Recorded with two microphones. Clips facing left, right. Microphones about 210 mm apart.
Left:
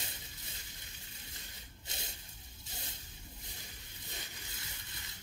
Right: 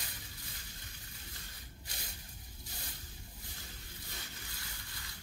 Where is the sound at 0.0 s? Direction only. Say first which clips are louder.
Even; 25° left (ahead or behind).